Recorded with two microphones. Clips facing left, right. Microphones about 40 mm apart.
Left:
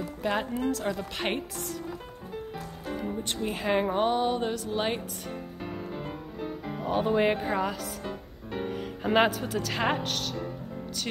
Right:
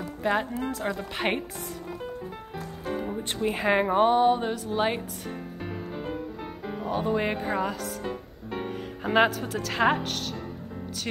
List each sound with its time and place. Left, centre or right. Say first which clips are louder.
0.0 s music: right 3 dB; centre
0.7 s speech: left 1 dB; centre
2.5 s music: right 7 dB; centre
3.4 s speech: right 4 dB; centre
5.9 s music: right 3 dB; centre
6.9 s speech: left 2 dB; centre
7.3 s speech: right 1 dB; centre
8.1 s music: right 2 dB; centre